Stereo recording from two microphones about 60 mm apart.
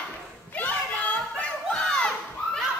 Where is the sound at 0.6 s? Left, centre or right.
Left.